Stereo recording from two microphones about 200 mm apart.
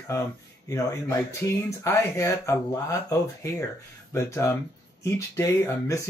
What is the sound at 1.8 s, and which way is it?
Speech, 15° left (ahead or behind).